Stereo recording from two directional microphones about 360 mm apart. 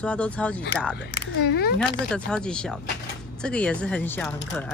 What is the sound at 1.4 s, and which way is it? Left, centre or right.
Speech, left.